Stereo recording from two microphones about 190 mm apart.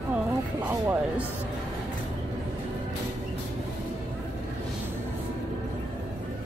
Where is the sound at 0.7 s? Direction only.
10° right (ahead or behind).